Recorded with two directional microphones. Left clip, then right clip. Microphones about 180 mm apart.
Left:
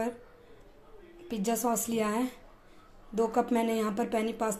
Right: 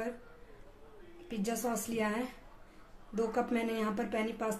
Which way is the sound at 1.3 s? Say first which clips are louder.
Left 6 dB; 25° left (ahead or behind).